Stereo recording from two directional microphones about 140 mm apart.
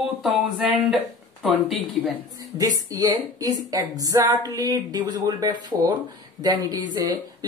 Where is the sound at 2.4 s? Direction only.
25° right (ahead or behind).